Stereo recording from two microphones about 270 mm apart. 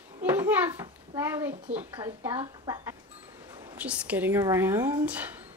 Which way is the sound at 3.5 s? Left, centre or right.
Centre.